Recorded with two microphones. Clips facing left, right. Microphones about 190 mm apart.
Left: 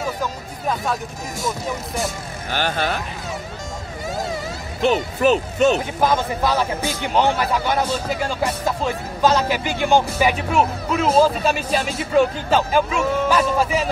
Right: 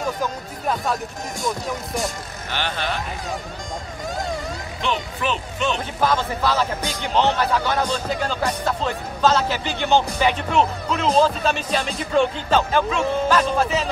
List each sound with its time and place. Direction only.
2.5 s speech: 45° left (ahead or behind)
4.1 s a sound: 5° left (ahead or behind)
4.8 s a child's voice: 40° left (ahead or behind)
5.9 s speech: 15° left (ahead or behind)